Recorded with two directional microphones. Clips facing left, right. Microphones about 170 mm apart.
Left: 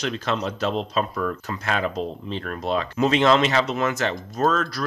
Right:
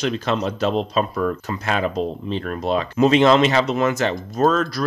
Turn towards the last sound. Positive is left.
turn(degrees=-20)  # may be behind; listen again after turning